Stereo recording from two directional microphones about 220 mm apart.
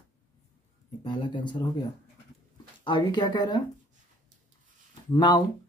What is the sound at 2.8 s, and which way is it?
Speech, 20° left (ahead or behind).